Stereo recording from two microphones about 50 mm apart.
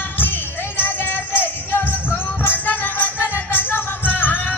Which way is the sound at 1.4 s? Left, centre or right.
Left.